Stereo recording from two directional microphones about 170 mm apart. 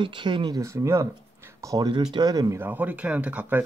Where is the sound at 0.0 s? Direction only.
30° right (ahead or behind).